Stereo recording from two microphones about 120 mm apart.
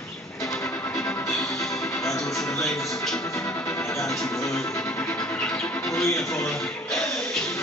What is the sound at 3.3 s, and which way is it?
Music, 25° left (ahead or behind).